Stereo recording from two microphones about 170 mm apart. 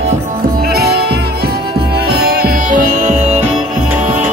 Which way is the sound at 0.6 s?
65° right (ahead or behind).